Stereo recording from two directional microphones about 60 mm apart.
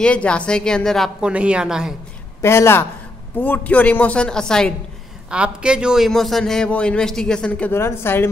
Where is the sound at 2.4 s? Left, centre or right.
Left.